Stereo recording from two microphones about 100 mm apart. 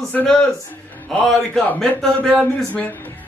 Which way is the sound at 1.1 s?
Centre (ahead or behind).